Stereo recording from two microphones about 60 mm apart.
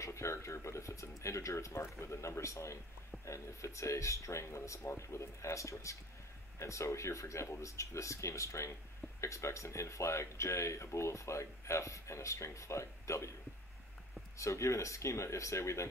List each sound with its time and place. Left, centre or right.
0.0 s speech: left
14.4 s speech: left